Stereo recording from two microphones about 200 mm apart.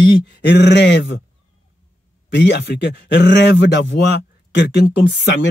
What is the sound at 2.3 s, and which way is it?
Speech, 60° left (ahead or behind).